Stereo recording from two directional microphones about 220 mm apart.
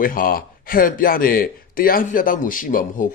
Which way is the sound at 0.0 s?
40° left (ahead or behind).